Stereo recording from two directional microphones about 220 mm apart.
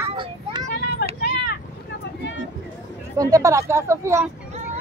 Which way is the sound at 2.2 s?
50° left (ahead or behind).